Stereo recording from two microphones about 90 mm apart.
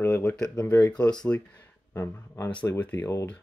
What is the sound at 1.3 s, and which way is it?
Speech, 25° left (ahead or behind).